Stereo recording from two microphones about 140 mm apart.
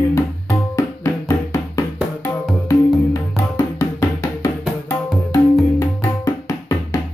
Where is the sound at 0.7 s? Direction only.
25° left (ahead or behind).